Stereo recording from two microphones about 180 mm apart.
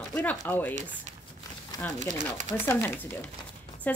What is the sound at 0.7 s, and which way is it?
Speech, 40° right (ahead or behind).